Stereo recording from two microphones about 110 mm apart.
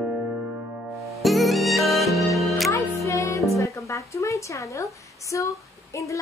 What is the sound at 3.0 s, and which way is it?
Music, 30° left (ahead or behind).